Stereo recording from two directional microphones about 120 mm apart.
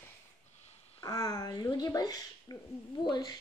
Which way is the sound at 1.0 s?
30° left (ahead or behind).